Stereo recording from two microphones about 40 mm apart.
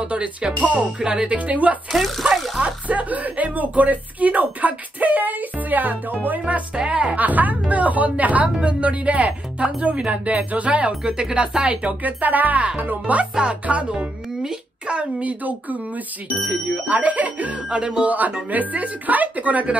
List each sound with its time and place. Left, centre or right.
0.0 s speech: right
1.2 s speech: right
1.9 s speech: centre
2.6 s speech: right
6.4 s speech: right
7.2 s speech: right
10.9 s speech: right
12.0 s speech: right
13.3 s speech: right
16.8 s speech: right
17.6 s speech: right
18.0 s speech: right